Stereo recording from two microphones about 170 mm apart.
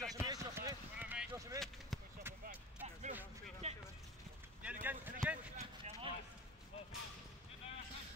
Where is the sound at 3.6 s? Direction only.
40° right (ahead or behind).